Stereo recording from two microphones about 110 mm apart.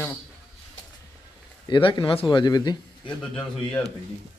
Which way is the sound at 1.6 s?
45° left (ahead or behind).